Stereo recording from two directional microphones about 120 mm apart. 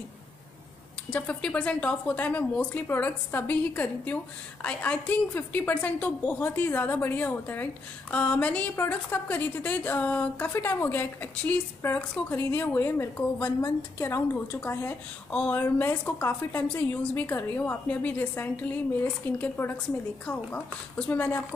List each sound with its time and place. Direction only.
1.1 s a woman's voice: 10° left (ahead or behind)